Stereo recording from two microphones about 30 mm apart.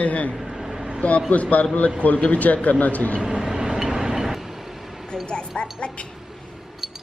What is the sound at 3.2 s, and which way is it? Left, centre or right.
Vehicle, right.